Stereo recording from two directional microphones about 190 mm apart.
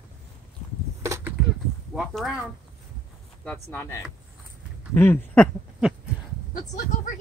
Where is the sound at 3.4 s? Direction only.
5° left (ahead or behind).